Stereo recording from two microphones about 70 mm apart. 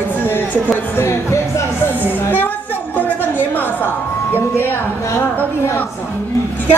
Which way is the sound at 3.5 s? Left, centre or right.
Left.